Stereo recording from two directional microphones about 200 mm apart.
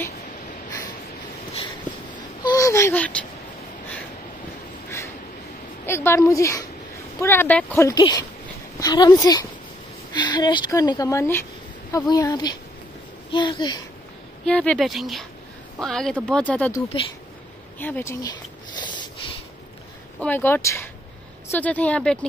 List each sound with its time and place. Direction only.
2.4 s a sound: 15° left (ahead or behind)
5.9 s a woman's voice: 10° left (ahead or behind)
14.4 s speech: 5° left (ahead or behind)
20.2 s speech: 10° left (ahead or behind)